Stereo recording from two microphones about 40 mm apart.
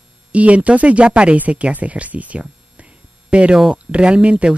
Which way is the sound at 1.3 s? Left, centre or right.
Right.